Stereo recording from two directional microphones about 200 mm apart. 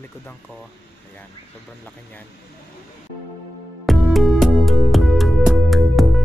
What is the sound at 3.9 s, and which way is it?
Music, centre (ahead or behind).